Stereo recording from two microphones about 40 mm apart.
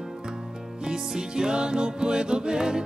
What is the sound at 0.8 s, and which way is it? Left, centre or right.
Music, centre.